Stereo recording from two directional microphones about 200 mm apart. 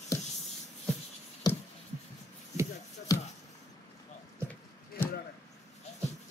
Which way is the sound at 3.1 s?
20° left (ahead or behind).